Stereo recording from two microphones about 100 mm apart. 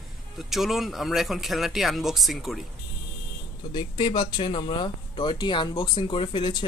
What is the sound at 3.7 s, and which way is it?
Speech, 55° left (ahead or behind).